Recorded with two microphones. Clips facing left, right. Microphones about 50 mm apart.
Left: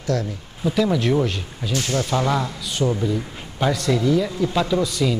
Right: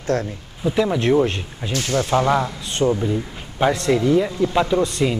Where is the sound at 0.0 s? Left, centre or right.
Right.